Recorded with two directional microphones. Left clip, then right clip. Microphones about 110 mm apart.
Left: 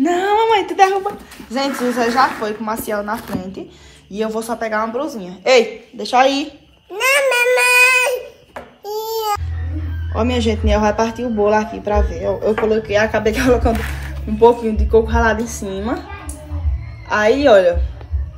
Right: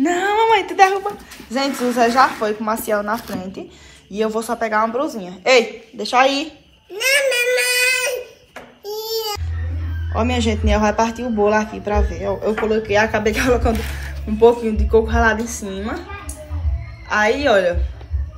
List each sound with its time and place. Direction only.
0.0 s a woman's voice: 30° left (ahead or behind)
6.9 s babbling: 30° left (ahead or behind)
7.4 s a sound: 45° left (ahead or behind)
9.0 s music: 25° left (ahead or behind)
10.1 s a man's voice: 15° left (ahead or behind)
15.4 s a woman's voice: 30° left (ahead or behind)
17.1 s a woman's voice: 35° left (ahead or behind)